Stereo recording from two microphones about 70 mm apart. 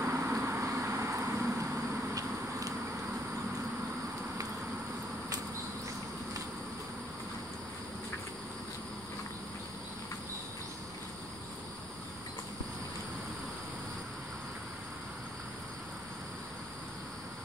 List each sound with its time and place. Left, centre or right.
0.0 s vehicle: right